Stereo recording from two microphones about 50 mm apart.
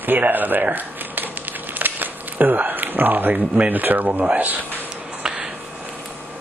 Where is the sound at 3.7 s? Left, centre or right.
Right.